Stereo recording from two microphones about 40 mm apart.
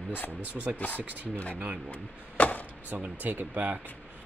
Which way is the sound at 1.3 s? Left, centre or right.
Left.